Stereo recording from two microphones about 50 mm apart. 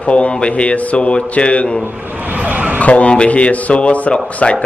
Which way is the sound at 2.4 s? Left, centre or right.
Right.